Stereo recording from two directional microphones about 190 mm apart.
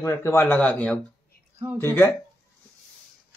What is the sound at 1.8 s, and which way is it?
Speech, 10° left (ahead or behind).